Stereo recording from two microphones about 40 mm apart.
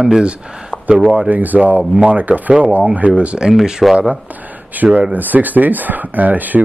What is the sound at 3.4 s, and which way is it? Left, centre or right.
Speech, centre.